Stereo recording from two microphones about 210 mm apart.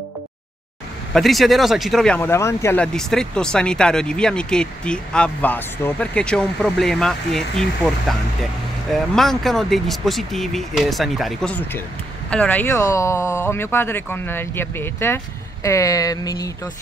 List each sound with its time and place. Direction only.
1.1 s speech: centre (ahead or behind); by 16.5 s 15° left (ahead or behind)